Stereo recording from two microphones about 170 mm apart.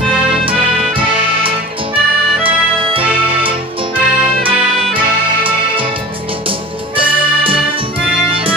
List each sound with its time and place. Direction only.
0.5 s music: 30° right (ahead or behind)
7.0 s music: 30° right (ahead or behind)